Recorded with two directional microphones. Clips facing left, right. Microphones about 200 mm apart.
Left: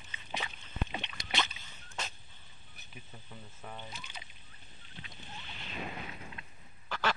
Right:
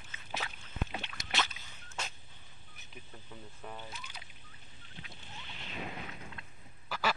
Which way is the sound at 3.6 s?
Centre (ahead or behind).